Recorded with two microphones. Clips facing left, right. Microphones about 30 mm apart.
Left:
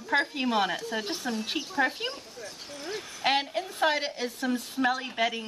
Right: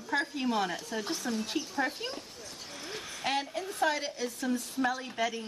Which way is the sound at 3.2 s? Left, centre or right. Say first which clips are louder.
Left 6 dB; left.